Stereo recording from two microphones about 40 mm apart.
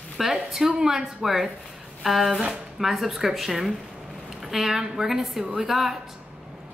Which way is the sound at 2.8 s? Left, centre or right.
Centre.